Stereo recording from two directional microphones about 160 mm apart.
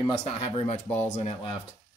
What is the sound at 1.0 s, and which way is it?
Speech, 55° left (ahead or behind).